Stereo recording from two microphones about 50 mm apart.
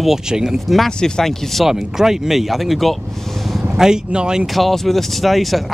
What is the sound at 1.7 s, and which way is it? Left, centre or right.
Speech, centre.